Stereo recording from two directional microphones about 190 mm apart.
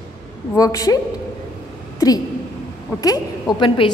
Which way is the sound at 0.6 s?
20° left (ahead or behind).